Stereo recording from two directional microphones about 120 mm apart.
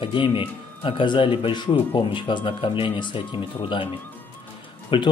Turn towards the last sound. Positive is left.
turn(degrees=45)  # may be behind; listen again after turning